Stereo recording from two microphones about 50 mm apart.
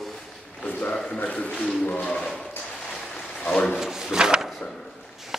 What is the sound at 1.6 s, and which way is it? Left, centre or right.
Speech, centre.